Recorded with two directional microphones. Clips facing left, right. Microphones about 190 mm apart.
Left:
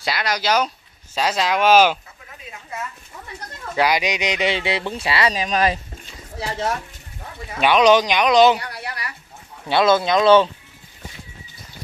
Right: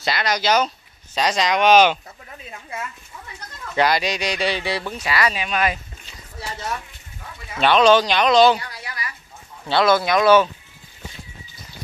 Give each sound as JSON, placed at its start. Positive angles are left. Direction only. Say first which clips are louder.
{"t": 0.0, "sound": "speech", "louder": "right 1 dB", "side_deg": 5}
{"t": 3.7, "sound": "speech", "louder": "even", "side_deg": 10}
{"t": 7.5, "sound": "speech", "louder": "even", "side_deg": 10}
{"t": 8.5, "sound": "a sound", "louder": "left 3 dB", "side_deg": 60}
{"t": 9.7, "sound": "speech", "louder": "left 1 dB", "side_deg": 20}